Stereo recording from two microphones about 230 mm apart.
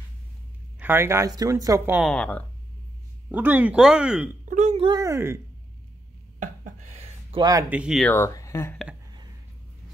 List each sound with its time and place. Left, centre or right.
0.7 s speech: centre
2.0 s speech: centre
3.3 s speech: centre
4.5 s speech: right; by 5.4 s centre
6.4 s a sound: right; by 8.7 s centre